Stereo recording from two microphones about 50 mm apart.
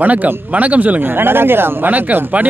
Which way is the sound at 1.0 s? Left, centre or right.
Right.